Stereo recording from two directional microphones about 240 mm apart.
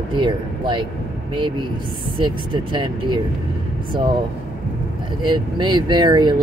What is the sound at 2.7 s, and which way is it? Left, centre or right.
Speech, centre.